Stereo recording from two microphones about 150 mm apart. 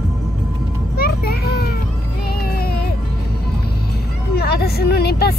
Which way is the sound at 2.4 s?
90° left.